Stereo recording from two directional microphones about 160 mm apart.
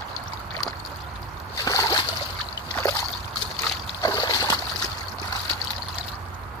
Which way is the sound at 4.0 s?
25° left (ahead or behind).